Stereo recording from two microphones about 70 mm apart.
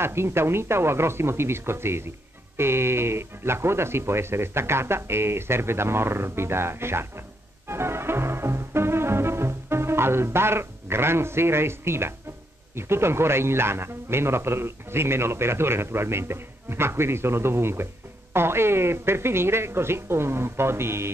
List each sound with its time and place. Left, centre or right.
0.0 s speech: right
7.6 s music: right
12.7 s speech: right